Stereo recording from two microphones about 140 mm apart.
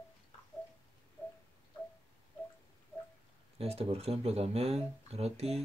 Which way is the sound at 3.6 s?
45° right (ahead or behind).